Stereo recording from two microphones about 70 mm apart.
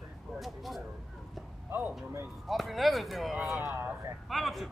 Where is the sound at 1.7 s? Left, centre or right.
Right.